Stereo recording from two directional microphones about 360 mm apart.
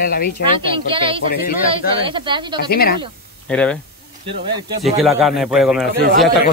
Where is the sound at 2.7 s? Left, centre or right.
Left.